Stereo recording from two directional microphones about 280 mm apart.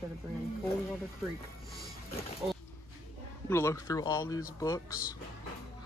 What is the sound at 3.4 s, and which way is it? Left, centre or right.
Speech, centre.